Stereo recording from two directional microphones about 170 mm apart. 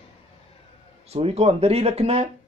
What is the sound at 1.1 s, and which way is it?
Speech, 35° right (ahead or behind).